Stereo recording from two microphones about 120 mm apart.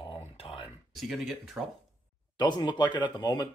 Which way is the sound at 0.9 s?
Centre (ahead or behind).